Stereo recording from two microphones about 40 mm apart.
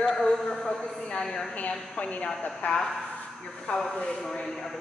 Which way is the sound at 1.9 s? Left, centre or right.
Left.